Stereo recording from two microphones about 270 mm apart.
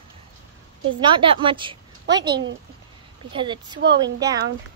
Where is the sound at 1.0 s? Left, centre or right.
Centre.